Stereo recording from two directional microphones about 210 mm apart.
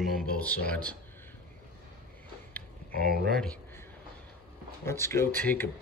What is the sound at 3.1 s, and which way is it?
Speech, 45° right (ahead or behind).